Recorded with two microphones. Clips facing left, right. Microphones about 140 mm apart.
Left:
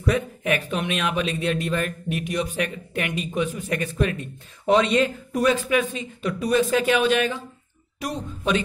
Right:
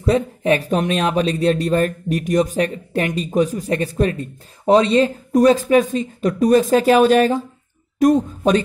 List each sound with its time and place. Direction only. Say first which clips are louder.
0.0 s speech: right 6 dB; 30° right (ahead or behind)